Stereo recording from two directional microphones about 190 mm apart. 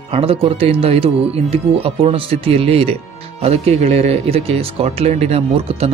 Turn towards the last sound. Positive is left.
turn(degrees=-30)  # may be behind; listen again after turning